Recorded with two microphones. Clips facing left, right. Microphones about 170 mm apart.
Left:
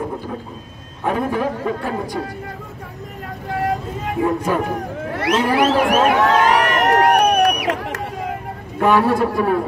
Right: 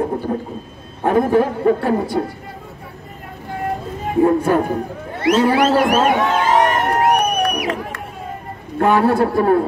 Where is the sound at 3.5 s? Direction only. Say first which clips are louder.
Left 2 dB; 85° left.